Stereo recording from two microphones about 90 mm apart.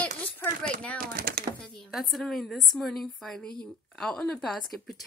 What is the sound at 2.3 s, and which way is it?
A woman's voice, centre (ahead or behind).